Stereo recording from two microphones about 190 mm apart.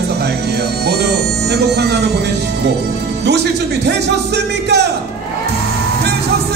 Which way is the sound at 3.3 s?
65° right (ahead or behind).